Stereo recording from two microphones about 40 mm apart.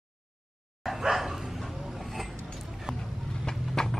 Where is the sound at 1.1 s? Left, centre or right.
Centre.